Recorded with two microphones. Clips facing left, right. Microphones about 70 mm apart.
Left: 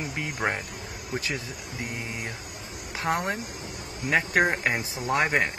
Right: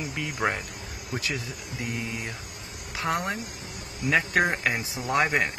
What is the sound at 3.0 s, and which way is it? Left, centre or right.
Speech, left.